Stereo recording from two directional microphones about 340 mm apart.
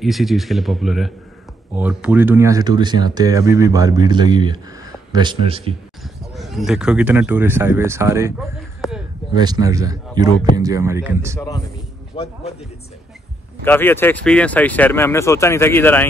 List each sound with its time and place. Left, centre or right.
0.0 s speech: centre
6.3 s speech: centre
9.3 s speech: centre
11.3 s a man's voice: centre
13.7 s speech: centre